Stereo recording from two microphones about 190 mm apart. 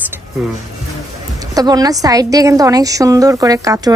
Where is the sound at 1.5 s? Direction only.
20° right (ahead or behind).